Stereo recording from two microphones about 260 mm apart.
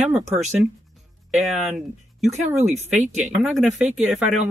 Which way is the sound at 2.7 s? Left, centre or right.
Right.